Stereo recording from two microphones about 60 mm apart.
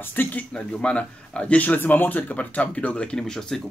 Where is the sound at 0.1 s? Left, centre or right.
Left.